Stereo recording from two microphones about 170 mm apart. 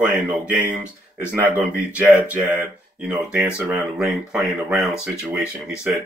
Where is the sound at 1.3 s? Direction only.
10° right (ahead or behind).